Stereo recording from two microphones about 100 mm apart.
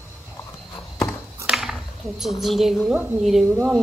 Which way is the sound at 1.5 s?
5° right (ahead or behind).